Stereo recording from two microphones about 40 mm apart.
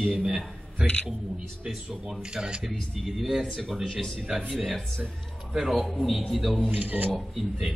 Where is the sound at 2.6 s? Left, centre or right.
Centre.